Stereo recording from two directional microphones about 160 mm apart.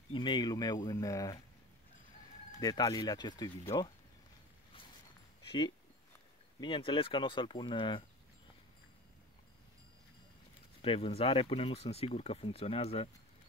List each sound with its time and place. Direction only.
0.1 s speech: 30° left (ahead or behind)
2.6 s speech: 25° left (ahead or behind)
6.6 s speech: 30° left (ahead or behind)
10.8 s speech: 35° left (ahead or behind)